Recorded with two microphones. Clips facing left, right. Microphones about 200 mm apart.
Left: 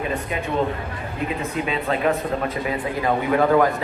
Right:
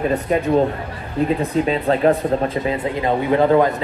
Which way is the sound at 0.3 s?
40° right (ahead or behind).